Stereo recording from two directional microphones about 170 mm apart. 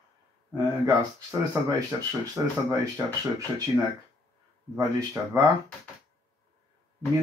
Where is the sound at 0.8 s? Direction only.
20° right (ahead or behind).